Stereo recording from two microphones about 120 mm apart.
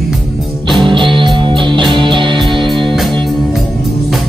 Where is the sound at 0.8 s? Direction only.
45° right (ahead or behind).